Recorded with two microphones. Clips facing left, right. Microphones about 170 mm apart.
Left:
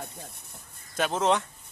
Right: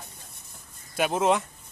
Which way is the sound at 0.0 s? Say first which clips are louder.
Left 7 dB; 60° left (ahead or behind).